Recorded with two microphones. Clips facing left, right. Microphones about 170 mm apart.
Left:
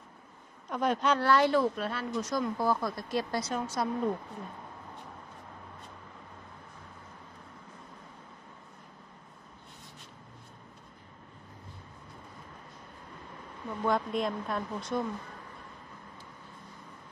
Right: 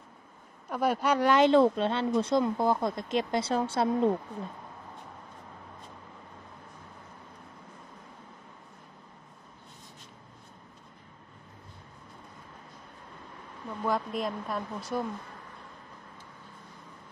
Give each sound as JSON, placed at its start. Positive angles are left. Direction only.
{"t": 0.7, "sound": "speech", "side_deg": -10}
{"t": 13.7, "sound": "speech", "side_deg": 0}